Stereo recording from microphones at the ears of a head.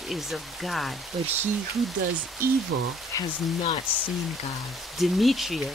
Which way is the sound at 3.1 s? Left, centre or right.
Left.